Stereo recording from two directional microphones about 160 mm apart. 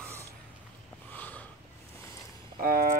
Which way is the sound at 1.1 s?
10° left (ahead or behind).